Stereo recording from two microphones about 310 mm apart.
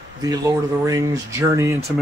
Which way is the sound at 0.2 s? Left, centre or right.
Centre.